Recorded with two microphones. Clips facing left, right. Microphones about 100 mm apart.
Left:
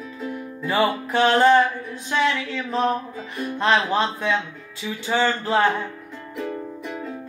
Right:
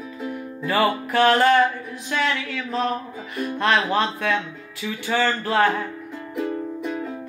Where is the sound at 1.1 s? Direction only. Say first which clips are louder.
Left 1 dB; 25° left (ahead or behind).